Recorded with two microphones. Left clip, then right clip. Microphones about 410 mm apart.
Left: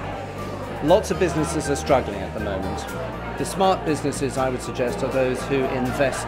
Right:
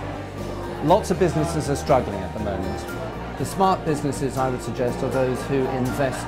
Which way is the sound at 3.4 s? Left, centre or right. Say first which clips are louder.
Even; right.